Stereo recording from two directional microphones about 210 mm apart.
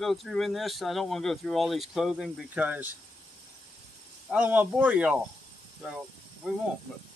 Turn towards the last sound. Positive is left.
turn(degrees=-5)  # may be behind; listen again after turning